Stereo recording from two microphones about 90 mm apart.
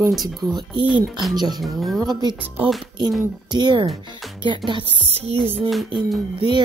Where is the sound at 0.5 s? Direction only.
60° right (ahead or behind).